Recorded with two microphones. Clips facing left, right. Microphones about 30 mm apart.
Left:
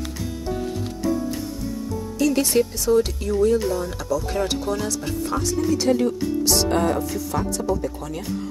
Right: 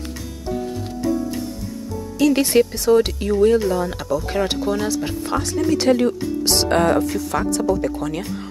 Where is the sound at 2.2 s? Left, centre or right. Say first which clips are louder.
Right 4 dB; right.